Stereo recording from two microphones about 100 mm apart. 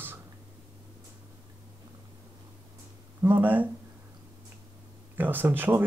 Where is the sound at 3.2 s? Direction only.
20° right (ahead or behind).